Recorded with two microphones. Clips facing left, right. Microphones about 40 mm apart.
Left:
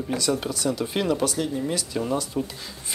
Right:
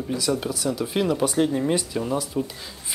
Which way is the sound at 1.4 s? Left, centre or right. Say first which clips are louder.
Right 5 dB; right.